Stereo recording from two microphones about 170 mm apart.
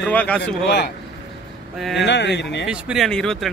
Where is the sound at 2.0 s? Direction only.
90° left.